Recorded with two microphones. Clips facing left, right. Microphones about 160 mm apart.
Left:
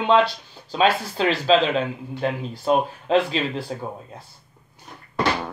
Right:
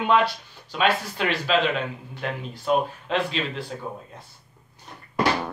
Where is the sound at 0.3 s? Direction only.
30° left (ahead or behind).